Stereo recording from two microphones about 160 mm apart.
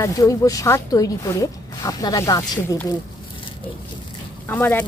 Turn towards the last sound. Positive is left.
turn(degrees=10)  # may be behind; listen again after turning